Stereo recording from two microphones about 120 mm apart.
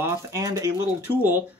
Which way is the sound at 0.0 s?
30° right (ahead or behind).